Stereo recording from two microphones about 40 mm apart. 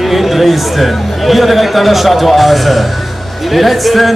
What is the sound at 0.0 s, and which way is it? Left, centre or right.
A man's voice, centre.